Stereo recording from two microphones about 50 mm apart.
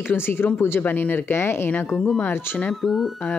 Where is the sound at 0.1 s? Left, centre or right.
Left.